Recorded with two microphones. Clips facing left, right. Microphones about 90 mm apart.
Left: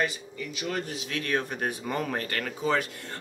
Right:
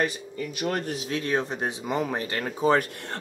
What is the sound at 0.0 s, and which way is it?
Speech, 45° right (ahead or behind).